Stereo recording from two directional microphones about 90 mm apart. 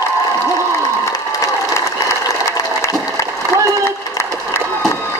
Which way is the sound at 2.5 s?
35° left (ahead or behind).